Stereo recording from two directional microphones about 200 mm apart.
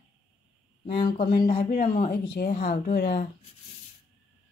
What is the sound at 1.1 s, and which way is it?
Speech, 40° left (ahead or behind).